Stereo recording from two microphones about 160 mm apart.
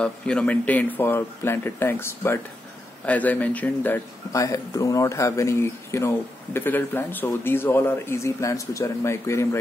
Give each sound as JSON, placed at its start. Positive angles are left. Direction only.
{"t": 0.0, "sound": "speech", "side_deg": 5}